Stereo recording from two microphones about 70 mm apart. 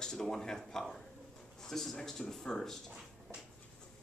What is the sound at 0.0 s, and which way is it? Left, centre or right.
Speech, centre.